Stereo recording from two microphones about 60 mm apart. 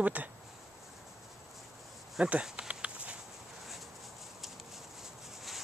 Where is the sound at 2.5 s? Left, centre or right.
Right.